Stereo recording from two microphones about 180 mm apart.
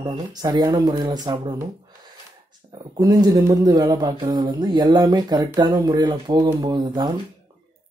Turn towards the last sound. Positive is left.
turn(degrees=-20)  # may be behind; listen again after turning